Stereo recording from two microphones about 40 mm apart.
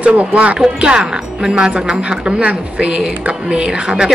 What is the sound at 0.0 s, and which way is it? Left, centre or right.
Speech, right.